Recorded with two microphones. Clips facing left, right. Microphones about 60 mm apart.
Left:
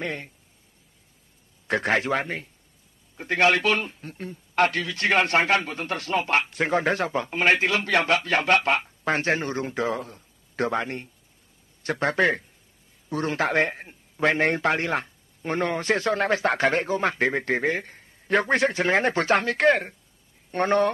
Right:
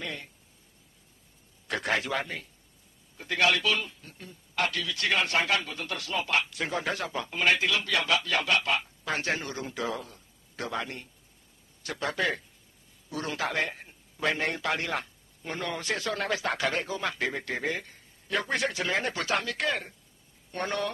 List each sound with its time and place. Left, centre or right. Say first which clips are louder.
0.0 s a man's voice: left 6 dB; left
1.7 s a man's voice: left 6 dB; left